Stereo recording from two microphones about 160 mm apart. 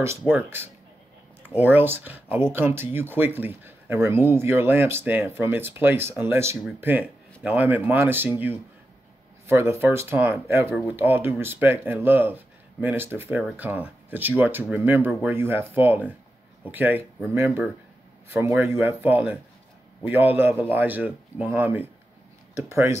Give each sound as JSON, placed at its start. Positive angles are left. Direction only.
{"t": 0.3, "sound": "speech", "side_deg": -15}